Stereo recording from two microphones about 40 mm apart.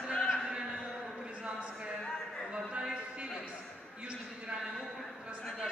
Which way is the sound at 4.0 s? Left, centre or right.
Right.